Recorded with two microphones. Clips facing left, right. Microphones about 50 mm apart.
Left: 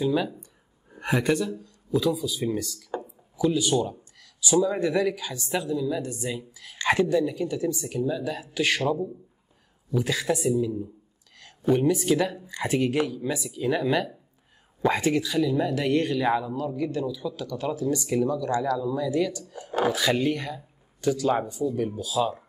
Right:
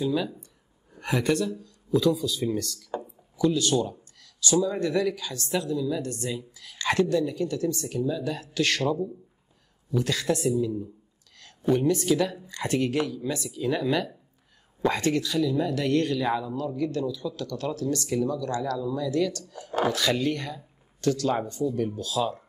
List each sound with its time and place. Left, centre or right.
0.0 s speech: centre
4.2 s a sound: centre
4.6 s speech: centre